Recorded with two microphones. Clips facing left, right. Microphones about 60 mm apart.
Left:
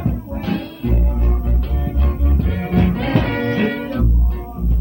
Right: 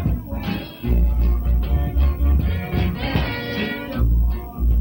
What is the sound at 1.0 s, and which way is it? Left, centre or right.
Music, centre.